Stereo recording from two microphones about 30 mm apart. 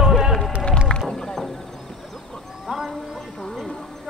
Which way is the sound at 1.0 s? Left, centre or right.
Centre.